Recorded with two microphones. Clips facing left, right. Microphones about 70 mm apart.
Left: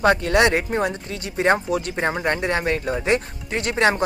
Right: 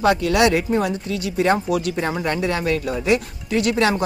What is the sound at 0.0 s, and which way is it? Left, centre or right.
Speech, left.